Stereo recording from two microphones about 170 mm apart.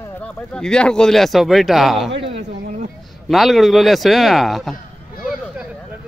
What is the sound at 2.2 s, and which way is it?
Speech, 35° right (ahead or behind).